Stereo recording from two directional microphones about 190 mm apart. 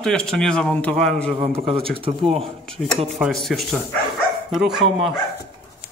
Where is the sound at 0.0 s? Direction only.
5° left (ahead or behind).